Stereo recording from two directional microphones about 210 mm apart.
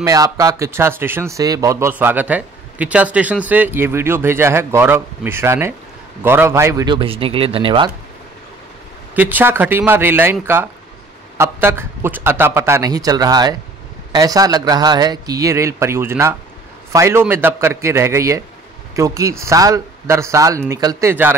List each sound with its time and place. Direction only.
0.0 s a man's voice: 15° right (ahead or behind)
9.1 s speech: 10° right (ahead or behind)